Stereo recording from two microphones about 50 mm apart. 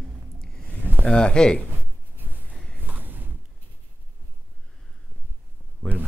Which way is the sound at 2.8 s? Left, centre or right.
Right.